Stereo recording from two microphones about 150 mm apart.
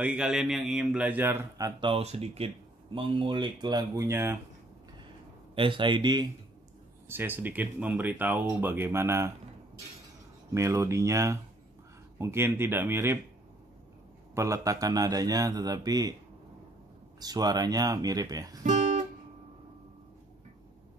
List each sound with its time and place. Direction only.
0.0 s speech: 5° right (ahead or behind)
1.8 s speech: 40° right (ahead or behind); by 4.4 s 15° right (ahead or behind)
5.5 s speech: 35° right (ahead or behind)
7.1 s speech: 15° right (ahead or behind)
10.5 s a man's voice: 20° right (ahead or behind)
14.3 s a man's voice: 20° right (ahead or behind)
17.2 s a man's voice: 25° right (ahead or behind)
18.6 s guitar: 50° right (ahead or behind)